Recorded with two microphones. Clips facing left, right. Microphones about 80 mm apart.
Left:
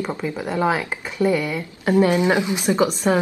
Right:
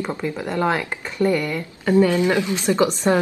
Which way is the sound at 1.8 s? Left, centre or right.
Left.